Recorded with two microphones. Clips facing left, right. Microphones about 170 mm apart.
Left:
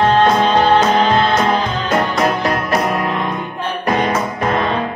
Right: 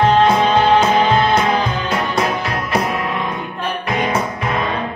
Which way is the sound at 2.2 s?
45° left (ahead or behind).